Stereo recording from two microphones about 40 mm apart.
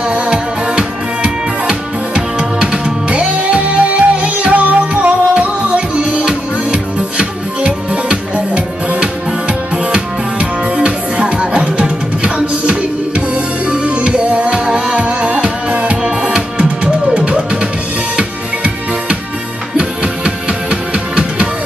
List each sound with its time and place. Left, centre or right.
0.7 s music: right